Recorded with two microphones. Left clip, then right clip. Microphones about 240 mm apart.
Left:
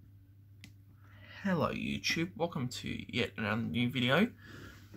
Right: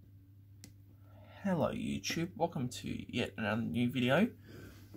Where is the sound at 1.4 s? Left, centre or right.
Centre.